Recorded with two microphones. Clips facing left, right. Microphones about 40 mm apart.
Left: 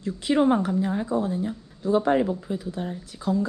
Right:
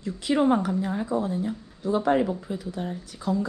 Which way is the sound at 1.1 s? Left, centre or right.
Left.